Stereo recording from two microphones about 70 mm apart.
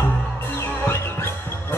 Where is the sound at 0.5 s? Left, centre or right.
Left.